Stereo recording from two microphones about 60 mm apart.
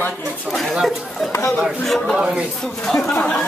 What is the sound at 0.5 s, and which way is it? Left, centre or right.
Speech, centre.